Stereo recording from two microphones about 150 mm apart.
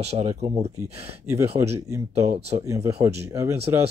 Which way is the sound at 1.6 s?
20° right (ahead or behind).